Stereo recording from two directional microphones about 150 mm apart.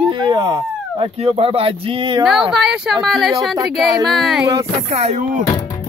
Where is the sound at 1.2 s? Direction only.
40° right (ahead or behind).